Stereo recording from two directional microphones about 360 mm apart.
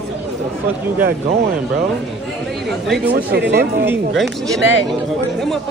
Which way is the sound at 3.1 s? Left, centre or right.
Right.